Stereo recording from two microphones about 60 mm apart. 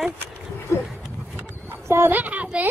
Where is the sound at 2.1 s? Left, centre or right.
Right.